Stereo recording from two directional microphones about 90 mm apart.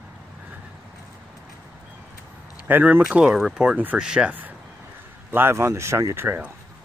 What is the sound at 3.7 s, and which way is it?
Speech, 20° right (ahead or behind).